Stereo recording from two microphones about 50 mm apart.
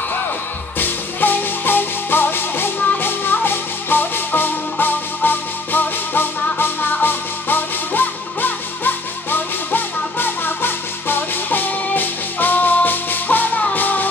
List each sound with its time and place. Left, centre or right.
0.7 s music: left